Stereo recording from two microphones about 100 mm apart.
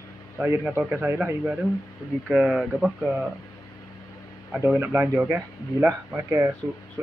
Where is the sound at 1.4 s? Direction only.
Centre (ahead or behind).